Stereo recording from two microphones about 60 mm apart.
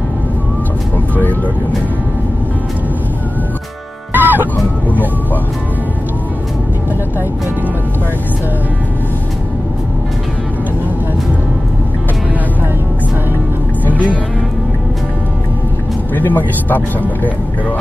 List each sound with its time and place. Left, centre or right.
0.9 s vehicle: left
4.1 s music: right
13.8 s music: left
16.2 s speech: left